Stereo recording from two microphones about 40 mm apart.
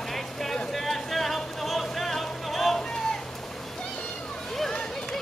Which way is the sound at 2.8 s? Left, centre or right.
Centre.